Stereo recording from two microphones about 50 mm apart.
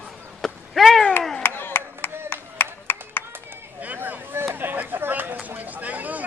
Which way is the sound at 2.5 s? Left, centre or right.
Left.